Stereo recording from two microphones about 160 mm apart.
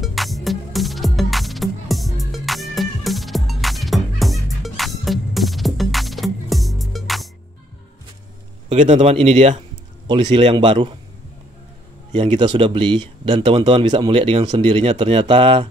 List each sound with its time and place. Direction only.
0.0 s music: centre (ahead or behind)
8.7 s speech: 45° right (ahead or behind); by 11.0 s 30° right (ahead or behind)
12.1 s speech: 35° right (ahead or behind)